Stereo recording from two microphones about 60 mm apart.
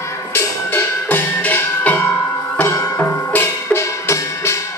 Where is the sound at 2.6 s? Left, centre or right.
Left.